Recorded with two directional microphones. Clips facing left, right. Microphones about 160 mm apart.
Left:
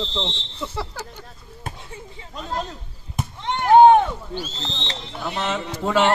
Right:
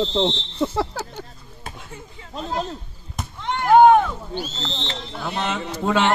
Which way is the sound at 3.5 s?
25° left (ahead or behind).